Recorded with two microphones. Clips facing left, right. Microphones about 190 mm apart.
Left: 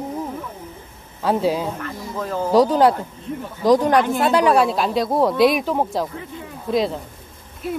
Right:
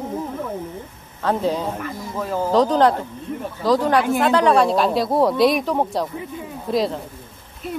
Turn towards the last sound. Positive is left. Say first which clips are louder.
# even
turn(degrees=0)  # may be behind; listen again after turning